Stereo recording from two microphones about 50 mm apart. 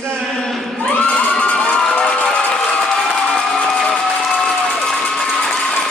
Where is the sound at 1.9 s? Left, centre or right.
Centre.